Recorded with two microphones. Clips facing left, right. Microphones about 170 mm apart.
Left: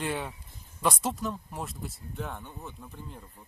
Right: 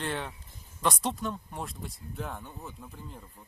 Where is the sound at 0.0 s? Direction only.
10° left (ahead or behind).